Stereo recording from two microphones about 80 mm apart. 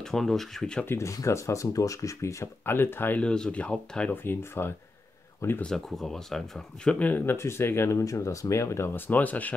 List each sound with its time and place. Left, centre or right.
0.0 s speech: centre
0.8 s speech: left
3.2 s speech: centre
4.1 s speech: left
5.6 s speech: centre